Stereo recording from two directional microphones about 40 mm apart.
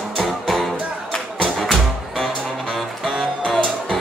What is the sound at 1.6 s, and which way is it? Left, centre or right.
Music, centre.